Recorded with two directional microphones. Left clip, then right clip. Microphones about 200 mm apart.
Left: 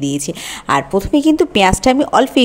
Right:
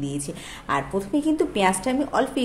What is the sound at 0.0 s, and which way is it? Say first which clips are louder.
A woman's voice: left 10 dB; 45° left (ahead or behind).